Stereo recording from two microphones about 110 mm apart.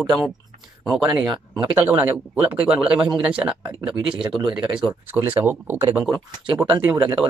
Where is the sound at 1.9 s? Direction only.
20° right (ahead or behind).